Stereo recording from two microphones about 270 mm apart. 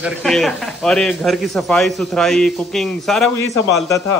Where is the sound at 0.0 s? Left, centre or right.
Centre.